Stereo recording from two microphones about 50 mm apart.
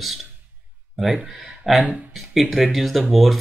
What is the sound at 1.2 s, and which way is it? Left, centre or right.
Speech, centre.